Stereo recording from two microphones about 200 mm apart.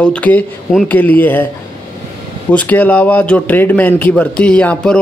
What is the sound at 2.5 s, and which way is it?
Speech, 5° left (ahead or behind).